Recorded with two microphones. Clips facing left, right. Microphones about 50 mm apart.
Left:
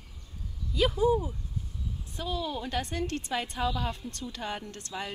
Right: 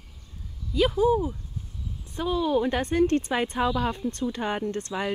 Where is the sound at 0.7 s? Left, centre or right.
Centre.